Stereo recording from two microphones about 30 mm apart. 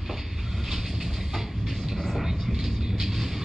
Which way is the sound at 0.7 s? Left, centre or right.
Centre.